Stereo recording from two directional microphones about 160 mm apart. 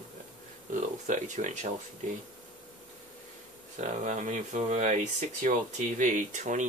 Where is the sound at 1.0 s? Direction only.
50° right (ahead or behind).